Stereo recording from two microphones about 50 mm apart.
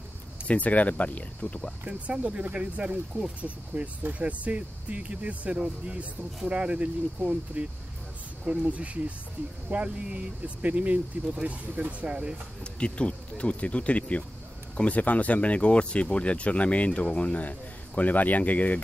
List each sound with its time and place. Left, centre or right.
0.5 s speech: left
2.0 s speech: right
12.7 s speech: left